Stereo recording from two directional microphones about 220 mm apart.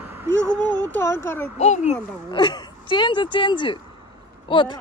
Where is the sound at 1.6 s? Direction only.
30° left (ahead or behind).